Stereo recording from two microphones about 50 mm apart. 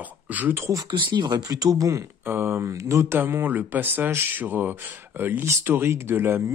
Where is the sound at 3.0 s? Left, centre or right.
Right.